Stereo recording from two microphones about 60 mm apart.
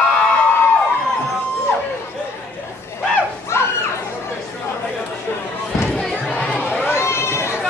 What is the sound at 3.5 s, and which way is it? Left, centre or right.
Children playing, left.